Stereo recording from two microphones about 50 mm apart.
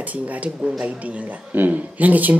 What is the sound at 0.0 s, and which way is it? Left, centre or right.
A man's voice, right.